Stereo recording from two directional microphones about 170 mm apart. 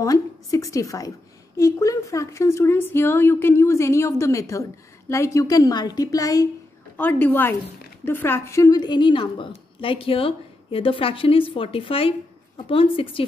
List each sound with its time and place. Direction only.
0.0 s a woman's voice: 20° left (ahead or behind)